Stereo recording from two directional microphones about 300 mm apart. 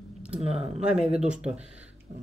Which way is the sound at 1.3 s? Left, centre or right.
Centre.